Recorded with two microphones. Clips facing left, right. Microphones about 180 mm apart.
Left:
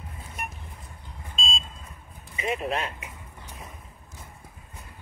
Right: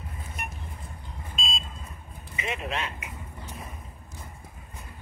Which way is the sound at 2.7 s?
40° left (ahead or behind).